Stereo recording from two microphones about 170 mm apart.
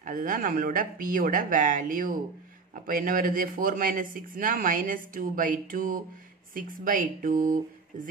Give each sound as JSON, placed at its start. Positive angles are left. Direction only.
{"t": 0.0, "sound": "speech", "side_deg": -50}